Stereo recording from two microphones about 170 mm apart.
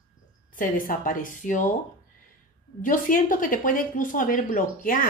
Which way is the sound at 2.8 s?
50° left (ahead or behind).